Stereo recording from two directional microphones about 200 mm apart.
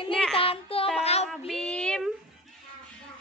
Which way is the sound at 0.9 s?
30° left (ahead or behind).